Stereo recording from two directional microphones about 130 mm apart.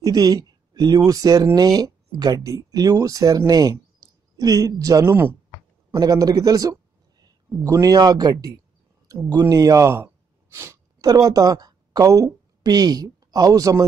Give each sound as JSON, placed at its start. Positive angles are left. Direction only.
{"t": 0.0, "sound": "speech", "side_deg": -30}
{"t": 5.9, "sound": "a sound", "side_deg": -30}
{"t": 7.6, "sound": "speech", "side_deg": -25}